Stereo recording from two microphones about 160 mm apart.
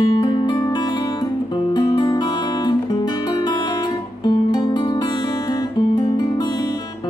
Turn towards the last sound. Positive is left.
turn(degrees=25)  # may be behind; listen again after turning